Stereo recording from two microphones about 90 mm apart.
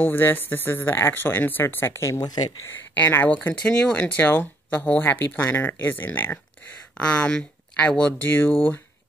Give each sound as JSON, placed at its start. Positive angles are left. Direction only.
{"t": 0.0, "sound": "speech", "side_deg": 25}
{"t": 2.1, "sound": "speech", "side_deg": 45}
{"t": 2.9, "sound": "speech", "side_deg": 20}